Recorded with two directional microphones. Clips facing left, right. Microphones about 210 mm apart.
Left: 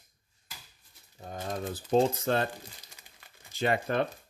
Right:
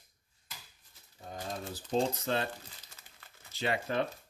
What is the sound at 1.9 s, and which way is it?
Speech, 50° left (ahead or behind).